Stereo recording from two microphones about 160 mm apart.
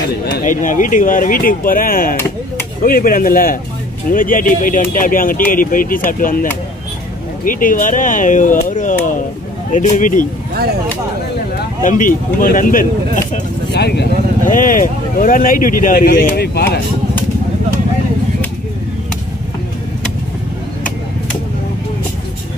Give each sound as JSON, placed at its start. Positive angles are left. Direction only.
{"t": 0.5, "sound": "speech", "side_deg": 55}
{"t": 7.4, "sound": "speech", "side_deg": 60}
{"t": 11.8, "sound": "speech", "side_deg": 55}
{"t": 13.7, "sound": "speech", "side_deg": 90}
{"t": 14.4, "sound": "speech", "side_deg": 60}